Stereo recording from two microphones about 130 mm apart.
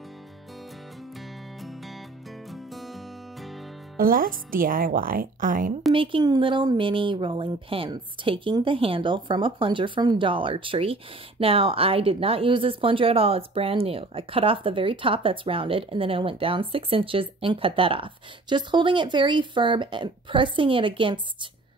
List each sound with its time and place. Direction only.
1.6 s music: centre (ahead or behind)
3.9 s speech: 90° right
5.9 s speech: 35° right (ahead or behind)